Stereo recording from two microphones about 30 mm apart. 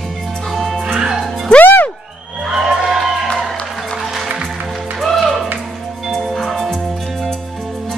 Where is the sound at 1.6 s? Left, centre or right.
Left.